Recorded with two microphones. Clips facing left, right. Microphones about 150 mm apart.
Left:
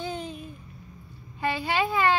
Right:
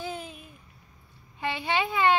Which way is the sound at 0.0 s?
5° right (ahead or behind).